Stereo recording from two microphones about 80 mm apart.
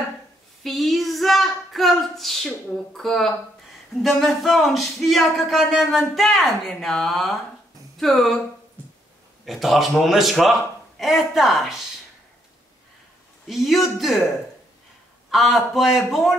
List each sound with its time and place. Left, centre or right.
0.7 s speech: centre
9.4 s speech: centre
13.5 s speech: centre
15.3 s speech: centre